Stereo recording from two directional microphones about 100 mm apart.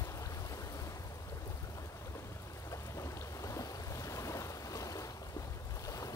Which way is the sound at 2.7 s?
30° left (ahead or behind).